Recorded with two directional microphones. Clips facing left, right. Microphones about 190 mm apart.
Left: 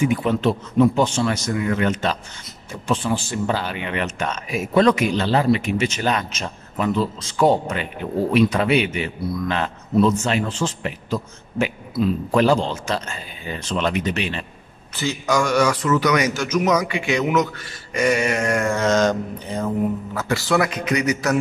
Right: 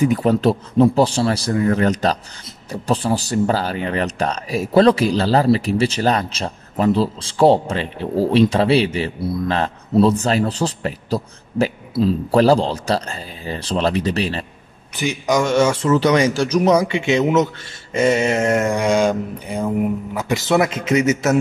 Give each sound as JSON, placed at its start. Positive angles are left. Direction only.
{"t": 0.0, "sound": "speech", "side_deg": -40}
{"t": 15.0, "sound": "mantra", "side_deg": -15}